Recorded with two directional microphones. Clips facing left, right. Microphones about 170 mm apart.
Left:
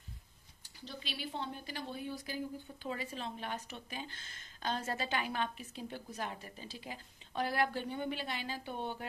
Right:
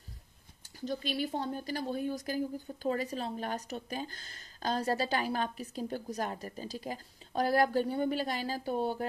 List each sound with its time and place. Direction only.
0.7 s speech: 45° right (ahead or behind)